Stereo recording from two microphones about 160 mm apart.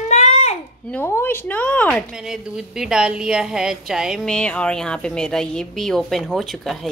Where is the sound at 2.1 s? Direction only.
5° right (ahead or behind).